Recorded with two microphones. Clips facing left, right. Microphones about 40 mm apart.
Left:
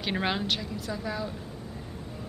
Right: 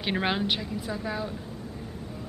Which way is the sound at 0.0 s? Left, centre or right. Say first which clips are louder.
Right 2 dB; centre.